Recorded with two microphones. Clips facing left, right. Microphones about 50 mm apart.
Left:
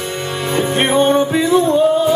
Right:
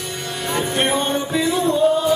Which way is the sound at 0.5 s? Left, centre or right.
Left.